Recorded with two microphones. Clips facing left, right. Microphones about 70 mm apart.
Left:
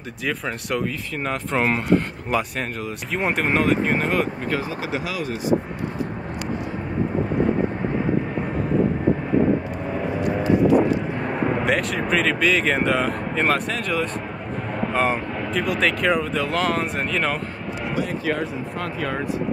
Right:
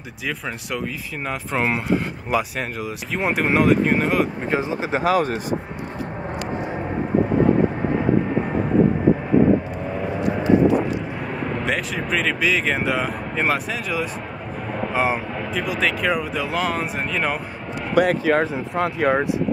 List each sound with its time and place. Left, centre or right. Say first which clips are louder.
0.7 s speech: left 4 dB; centre
4.9 s speech: right 10 dB; right
11.2 s vehicle: left 4 dB; centre
11.7 s speech: left 2 dB; centre
18.0 s speech: right 11 dB; right
18.8 s speech: right 9 dB; right